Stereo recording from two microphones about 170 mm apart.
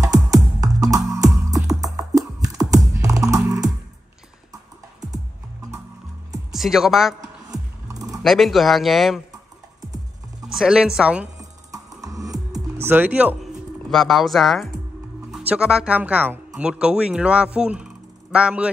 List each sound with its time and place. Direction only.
0.0 s music: 20° right (ahead or behind)
6.5 s speech: centre (ahead or behind)
7.2 s music: 20° right (ahead or behind)
8.2 s speech: centre (ahead or behind)
10.4 s speech: 5° right (ahead or behind)
11.3 s music: 20° right (ahead or behind)
12.8 s speech: 10° right (ahead or behind)